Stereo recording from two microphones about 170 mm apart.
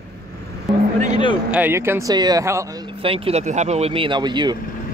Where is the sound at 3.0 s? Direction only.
35° right (ahead or behind).